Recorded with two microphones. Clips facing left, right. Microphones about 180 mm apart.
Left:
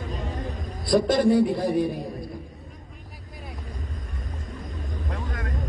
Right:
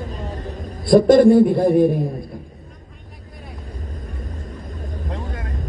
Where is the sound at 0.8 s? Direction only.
50° right (ahead or behind).